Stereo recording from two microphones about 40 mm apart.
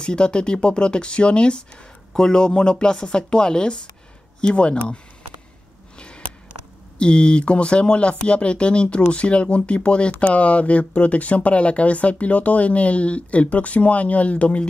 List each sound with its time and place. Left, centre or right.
0.0 s speech: left
5.9 s a sound: left
7.0 s speech: left